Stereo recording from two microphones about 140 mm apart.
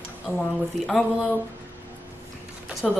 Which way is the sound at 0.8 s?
Centre (ahead or behind).